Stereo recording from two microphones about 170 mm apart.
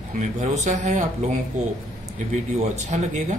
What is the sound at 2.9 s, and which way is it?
Speech, 45° right (ahead or behind).